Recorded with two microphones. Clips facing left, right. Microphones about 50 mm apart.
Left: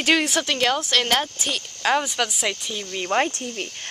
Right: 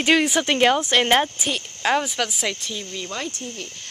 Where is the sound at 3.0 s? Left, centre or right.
Left.